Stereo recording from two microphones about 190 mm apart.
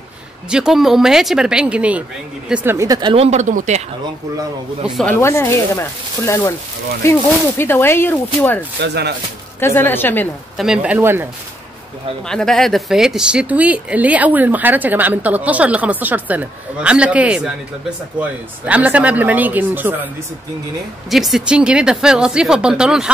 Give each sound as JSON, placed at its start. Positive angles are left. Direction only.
{"t": 0.5, "sound": "speech", "side_deg": -5}
{"t": 4.8, "sound": "speech", "side_deg": 0}
{"t": 5.2, "sound": "speech", "side_deg": 15}
{"t": 8.8, "sound": "speech", "side_deg": -60}
{"t": 9.6, "sound": "speech", "side_deg": 10}
{"t": 10.6, "sound": "speech", "side_deg": -5}
{"t": 12.3, "sound": "speech", "side_deg": 5}
{"t": 21.1, "sound": "speech", "side_deg": 0}